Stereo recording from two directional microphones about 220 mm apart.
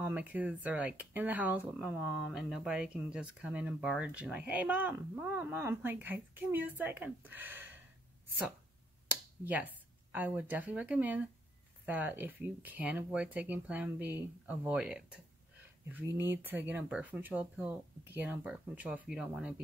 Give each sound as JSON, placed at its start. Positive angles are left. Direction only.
{"t": 0.0, "sound": "speech", "side_deg": -5}
{"t": 9.4, "sound": "speech", "side_deg": -5}
{"t": 16.2, "sound": "speech", "side_deg": -10}